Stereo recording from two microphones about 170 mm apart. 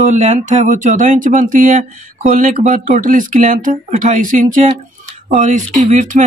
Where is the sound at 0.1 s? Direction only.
45° right (ahead or behind).